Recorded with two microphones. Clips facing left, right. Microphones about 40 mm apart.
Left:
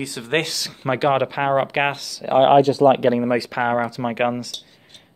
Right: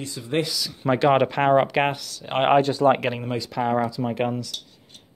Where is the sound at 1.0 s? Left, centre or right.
Centre.